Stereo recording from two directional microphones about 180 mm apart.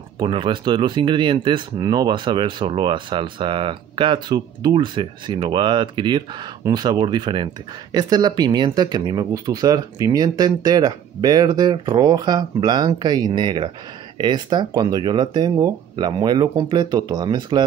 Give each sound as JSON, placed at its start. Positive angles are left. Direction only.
{"t": 0.2, "sound": "speech", "side_deg": -25}